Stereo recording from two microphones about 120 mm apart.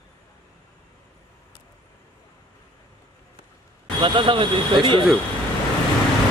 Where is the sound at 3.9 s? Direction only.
45° right (ahead or behind).